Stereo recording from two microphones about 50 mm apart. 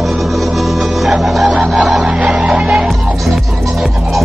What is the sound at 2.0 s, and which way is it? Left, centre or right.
Music, centre.